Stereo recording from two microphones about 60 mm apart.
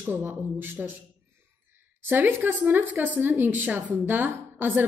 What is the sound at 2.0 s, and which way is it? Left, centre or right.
Speech, right.